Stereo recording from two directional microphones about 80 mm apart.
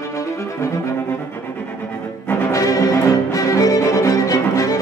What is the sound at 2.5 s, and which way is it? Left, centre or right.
Music, left.